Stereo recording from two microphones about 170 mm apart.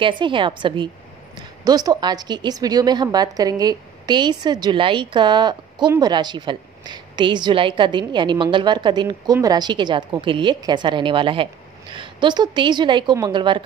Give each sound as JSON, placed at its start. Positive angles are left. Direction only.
{"t": 0.0, "sound": "a woman's voice", "side_deg": -30}